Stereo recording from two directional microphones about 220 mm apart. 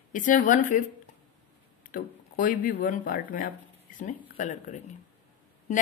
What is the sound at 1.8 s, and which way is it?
Speech, 35° left (ahead or behind).